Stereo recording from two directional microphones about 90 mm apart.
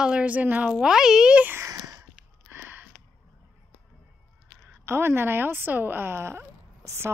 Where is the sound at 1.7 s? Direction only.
40° right (ahead or behind).